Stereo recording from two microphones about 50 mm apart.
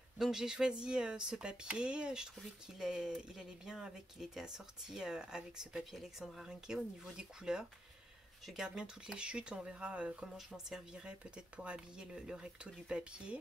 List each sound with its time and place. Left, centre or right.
0.2 s speech: centre
6.5 s speech: centre
10.2 s speech: centre
10.9 s speech: centre